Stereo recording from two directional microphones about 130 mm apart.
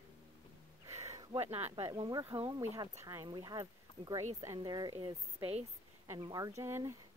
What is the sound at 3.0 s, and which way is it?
Speech, 20° right (ahead or behind).